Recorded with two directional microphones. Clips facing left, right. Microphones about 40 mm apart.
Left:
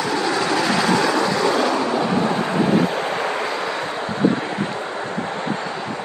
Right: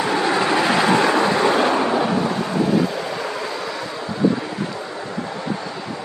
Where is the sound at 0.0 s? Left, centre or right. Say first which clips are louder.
Right 2 dB; right.